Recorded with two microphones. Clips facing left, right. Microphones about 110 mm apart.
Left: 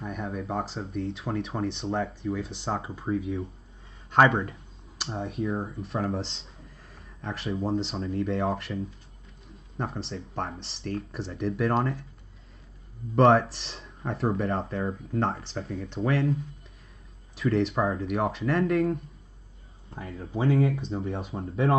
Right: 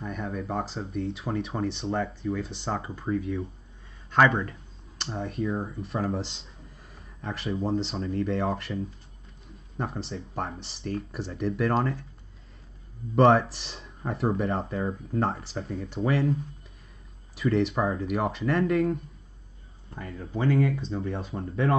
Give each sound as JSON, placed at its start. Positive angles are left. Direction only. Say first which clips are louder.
{"t": 0.0, "sound": "speech", "louder": "even", "side_deg": 0}
{"t": 4.1, "sound": "speech", "louder": "left 1 dB", "side_deg": 30}
{"t": 4.9, "sound": "speech", "louder": "even", "side_deg": 0}
{"t": 13.1, "sound": "speech", "louder": "even", "side_deg": 0}
{"t": 17.4, "sound": "speech", "louder": "even", "side_deg": 0}
{"t": 20.0, "sound": "speech", "louder": "even", "side_deg": 0}